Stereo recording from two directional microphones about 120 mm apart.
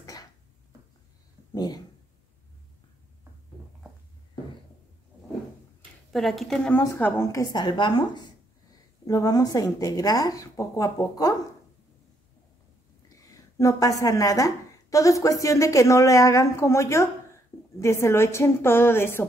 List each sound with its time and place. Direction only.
0.0 s a sound: 30° left (ahead or behind)
1.5 s speech: 35° left (ahead or behind)
6.1 s a woman's voice: centre (ahead or behind)
6.8 s a woman's voice: 20° left (ahead or behind)
7.3 s speech: 35° left (ahead or behind)
13.2 s a woman's voice: 25° left (ahead or behind)